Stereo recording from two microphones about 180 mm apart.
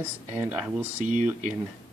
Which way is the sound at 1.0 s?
45° right (ahead or behind).